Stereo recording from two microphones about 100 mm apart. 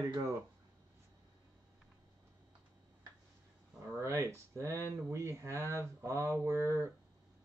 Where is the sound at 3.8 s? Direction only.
30° right (ahead or behind).